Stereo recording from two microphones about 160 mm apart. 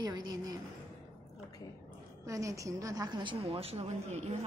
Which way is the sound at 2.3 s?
20° right (ahead or behind).